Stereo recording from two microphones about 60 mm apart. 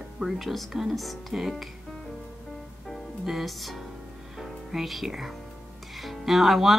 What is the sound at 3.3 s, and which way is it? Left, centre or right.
Speech, centre.